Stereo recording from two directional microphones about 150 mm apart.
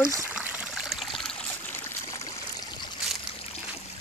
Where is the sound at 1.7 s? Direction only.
20° left (ahead or behind).